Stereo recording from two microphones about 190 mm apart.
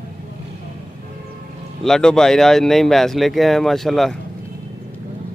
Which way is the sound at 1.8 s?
5° left (ahead or behind).